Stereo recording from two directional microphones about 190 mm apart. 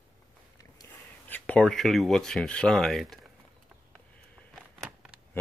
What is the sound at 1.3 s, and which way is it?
Speech, 5° left (ahead or behind).